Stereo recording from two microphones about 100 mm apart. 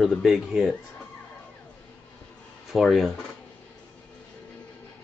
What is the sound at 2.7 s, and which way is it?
Speech, centre (ahead or behind).